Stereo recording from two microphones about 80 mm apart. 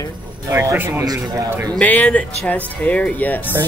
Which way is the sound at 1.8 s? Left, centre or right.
Centre.